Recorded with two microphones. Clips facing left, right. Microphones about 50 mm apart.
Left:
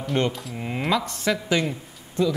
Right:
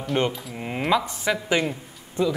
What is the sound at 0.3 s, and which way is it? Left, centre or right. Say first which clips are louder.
A man's voice: even; centre.